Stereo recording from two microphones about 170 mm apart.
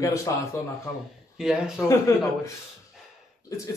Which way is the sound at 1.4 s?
5° right (ahead or behind).